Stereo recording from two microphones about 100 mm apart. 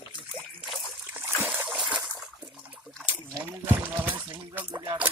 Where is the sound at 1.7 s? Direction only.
5° right (ahead or behind).